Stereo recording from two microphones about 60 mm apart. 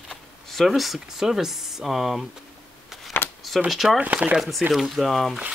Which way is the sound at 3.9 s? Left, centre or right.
Right.